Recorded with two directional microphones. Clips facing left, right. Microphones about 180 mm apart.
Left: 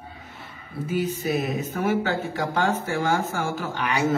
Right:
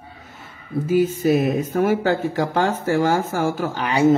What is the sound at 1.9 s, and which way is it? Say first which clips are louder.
Speech: right 5 dB; 40° right (ahead or behind).